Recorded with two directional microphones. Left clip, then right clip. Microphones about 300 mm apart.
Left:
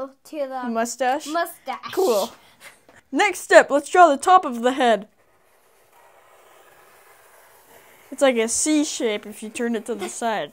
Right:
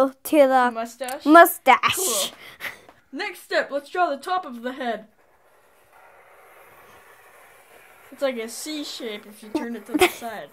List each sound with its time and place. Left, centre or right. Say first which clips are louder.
0.0 s speech: right 12 dB; right
0.7 s speech: left 8 dB; left
1.3 s speech: right 13 dB; right
3.1 s speech: left 11 dB; left
8.2 s speech: left 8 dB; left
9.4 s speech: left 3 dB; left